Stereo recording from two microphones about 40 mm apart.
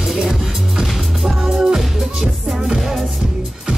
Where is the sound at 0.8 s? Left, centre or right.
Centre.